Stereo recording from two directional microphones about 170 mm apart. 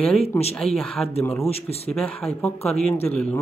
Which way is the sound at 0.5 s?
5° left (ahead or behind).